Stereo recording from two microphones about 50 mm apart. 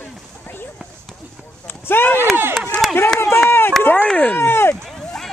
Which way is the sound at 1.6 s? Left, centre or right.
Left.